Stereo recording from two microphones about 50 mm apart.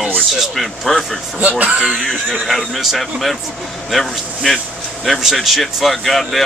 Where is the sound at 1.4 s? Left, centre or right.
Right.